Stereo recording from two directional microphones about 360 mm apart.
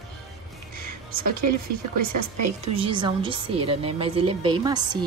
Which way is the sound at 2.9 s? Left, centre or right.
Centre.